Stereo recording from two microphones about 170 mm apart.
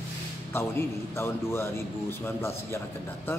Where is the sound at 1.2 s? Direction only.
15° left (ahead or behind).